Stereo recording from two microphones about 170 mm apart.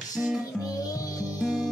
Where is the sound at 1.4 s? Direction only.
5° right (ahead or behind).